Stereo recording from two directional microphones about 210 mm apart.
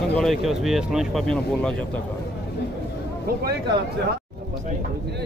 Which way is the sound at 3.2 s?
45° right (ahead or behind).